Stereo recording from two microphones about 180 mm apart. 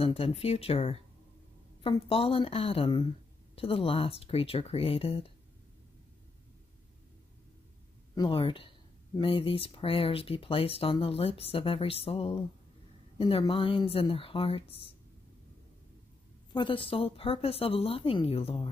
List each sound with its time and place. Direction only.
0.0 s speech: 35° left (ahead or behind)
8.1 s speech: 25° left (ahead or behind)
16.5 s speech: 30° left (ahead or behind)